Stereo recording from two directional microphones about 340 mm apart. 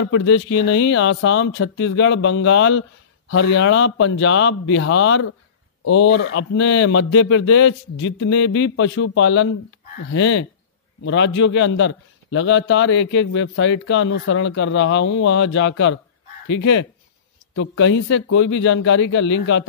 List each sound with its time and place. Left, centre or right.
0.0 s speech: left